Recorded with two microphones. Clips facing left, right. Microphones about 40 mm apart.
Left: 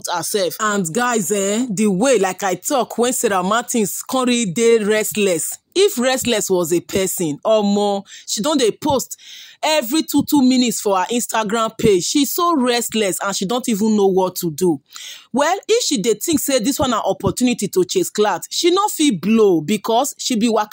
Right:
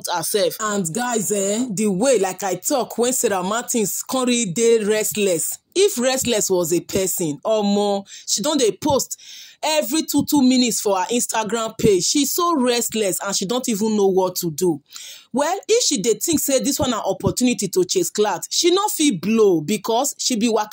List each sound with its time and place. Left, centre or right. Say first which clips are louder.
0.2 s speech: right 1 dB; centre
0.9 s speech: left 4 dB; left
2.6 s speech: left 1 dB; left
8.3 s speech: left 2 dB; left
10.5 s speech: left 2 dB; centre; by 12.3 s left
12.3 s speech: left 2 dB; centre
12.9 s speech: left 3 dB; left
13.3 s speech: left 2 dB; left
13.9 s speech: left 1 dB; left
15.3 s speech: left 4 dB; left
15.7 s speech: left 2 dB; left
18.7 s speech: left 2 dB; centre
19.4 s speech: even; left
20.3 s speech: left 2 dB; centre